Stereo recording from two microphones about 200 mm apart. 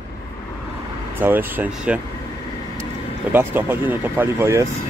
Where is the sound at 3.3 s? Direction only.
10° right (ahead or behind).